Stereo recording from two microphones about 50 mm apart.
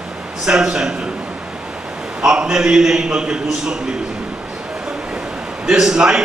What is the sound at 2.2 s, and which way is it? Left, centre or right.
A man's voice, centre.